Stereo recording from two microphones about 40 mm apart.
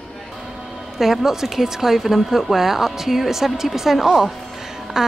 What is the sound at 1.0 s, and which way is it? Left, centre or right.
A woman's voice, centre.